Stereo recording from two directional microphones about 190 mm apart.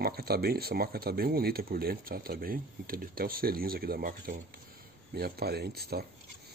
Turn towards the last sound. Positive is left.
turn(degrees=-55)  # may be behind; listen again after turning